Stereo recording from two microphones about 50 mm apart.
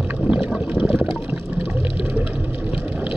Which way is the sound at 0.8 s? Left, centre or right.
Right.